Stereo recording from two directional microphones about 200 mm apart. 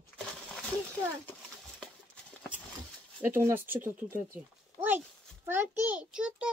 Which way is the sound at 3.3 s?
10° right (ahead or behind).